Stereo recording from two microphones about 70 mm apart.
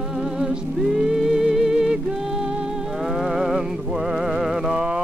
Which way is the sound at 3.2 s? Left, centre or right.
Centre.